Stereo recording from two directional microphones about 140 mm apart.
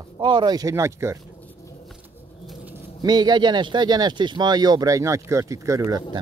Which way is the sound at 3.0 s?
30° right (ahead or behind).